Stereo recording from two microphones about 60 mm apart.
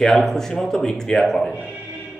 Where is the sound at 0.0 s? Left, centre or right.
Centre.